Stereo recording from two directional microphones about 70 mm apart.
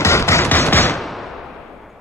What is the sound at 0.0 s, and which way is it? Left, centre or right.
Music, left.